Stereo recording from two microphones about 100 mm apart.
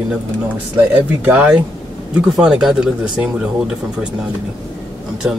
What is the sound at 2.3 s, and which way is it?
Speech, 5° right (ahead or behind).